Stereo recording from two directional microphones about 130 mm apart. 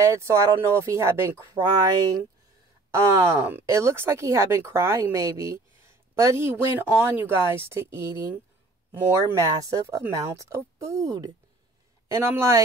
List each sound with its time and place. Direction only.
0.0 s speech: 20° right (ahead or behind)
2.9 s speech: 20° right (ahead or behind)